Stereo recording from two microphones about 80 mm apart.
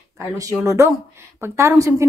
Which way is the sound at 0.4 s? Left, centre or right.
Right.